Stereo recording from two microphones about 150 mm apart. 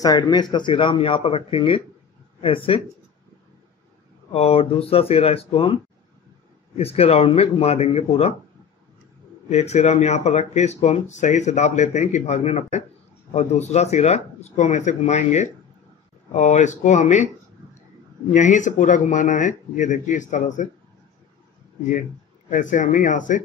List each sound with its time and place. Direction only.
0.0 s speech: 25° left (ahead or behind)
4.3 s speech: 40° left (ahead or behind)
6.8 s speech: 40° left (ahead or behind)
9.5 s speech: 45° left (ahead or behind)
18.3 s speech: 55° left (ahead or behind)
22.5 s speech: 60° left (ahead or behind)